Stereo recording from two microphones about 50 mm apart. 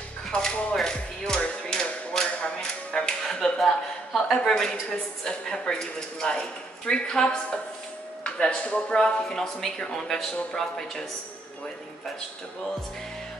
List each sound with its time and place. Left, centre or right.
0.3 s speech: centre
0.7 s music: centre
1.7 s tap: centre
3.5 s a sound: centre
5.2 s speech: centre
8.9 s speech: centre